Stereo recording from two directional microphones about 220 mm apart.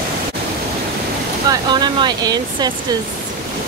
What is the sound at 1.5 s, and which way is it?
Speech, 20° right (ahead or behind).